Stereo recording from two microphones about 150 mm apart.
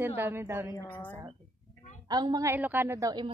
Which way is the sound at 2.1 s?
25° right (ahead or behind).